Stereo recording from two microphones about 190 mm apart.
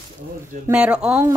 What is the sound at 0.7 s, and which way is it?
Speech, 5° right (ahead or behind).